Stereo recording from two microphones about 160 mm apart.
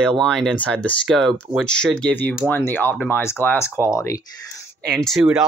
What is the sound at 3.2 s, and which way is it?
Speech, 15° left (ahead or behind).